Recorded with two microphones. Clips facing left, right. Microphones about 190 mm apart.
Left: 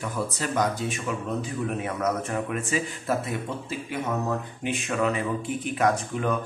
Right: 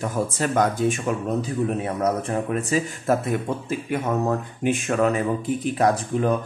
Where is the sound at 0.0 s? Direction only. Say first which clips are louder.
Right 5 dB; 50° right (ahead or behind).